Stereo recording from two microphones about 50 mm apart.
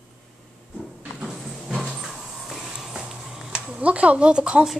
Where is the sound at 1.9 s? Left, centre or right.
Centre.